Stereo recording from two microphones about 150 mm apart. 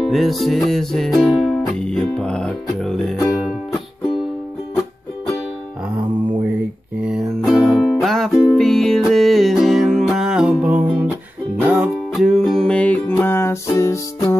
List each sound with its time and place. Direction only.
0.1 s music: centre (ahead or behind)
7.0 s music: 5° right (ahead or behind); by 14.3 s 20° left (ahead or behind)